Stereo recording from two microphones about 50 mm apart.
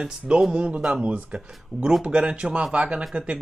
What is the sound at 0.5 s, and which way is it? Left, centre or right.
Speech, right.